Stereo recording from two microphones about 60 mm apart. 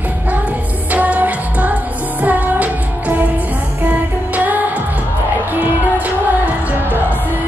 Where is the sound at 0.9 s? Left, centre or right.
Right.